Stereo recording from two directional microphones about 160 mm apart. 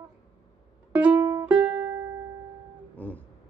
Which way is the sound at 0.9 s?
10° right (ahead or behind).